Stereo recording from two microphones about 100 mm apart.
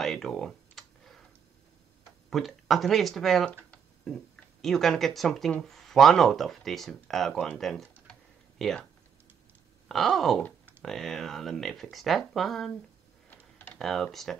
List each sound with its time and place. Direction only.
0.0 s computer keyboard: 5° left (ahead or behind)
2.2 s speech: centre (ahead or behind)
8.1 s tick-tock: 5° left (ahead or behind)
9.8 s speech: centre (ahead or behind)
13.3 s typing: 15° left (ahead or behind)
13.7 s speech: 5° left (ahead or behind)